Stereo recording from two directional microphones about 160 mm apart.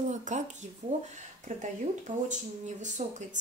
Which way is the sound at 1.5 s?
50° right (ahead or behind).